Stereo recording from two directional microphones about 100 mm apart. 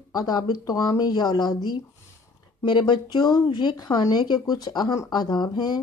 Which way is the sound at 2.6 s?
50° left (ahead or behind).